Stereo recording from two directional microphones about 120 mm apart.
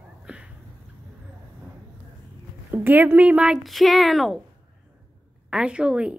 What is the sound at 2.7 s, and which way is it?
Speech, 15° right (ahead or behind).